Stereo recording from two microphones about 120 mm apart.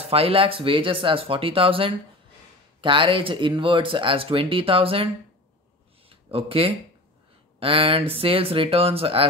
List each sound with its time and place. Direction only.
0.0 s speech: 55° right (ahead or behind)
6.0 s a sound: 50° right (ahead or behind)
7.6 s speech: 50° right (ahead or behind)